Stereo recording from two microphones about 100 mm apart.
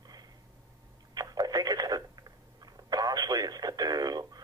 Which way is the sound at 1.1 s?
40° right (ahead or behind).